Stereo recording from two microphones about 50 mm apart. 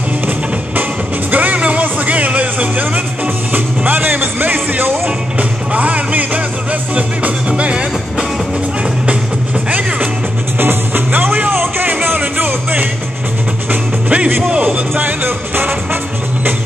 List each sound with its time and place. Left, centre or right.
1.3 s music: right
10.6 s music: right
14.0 s music: right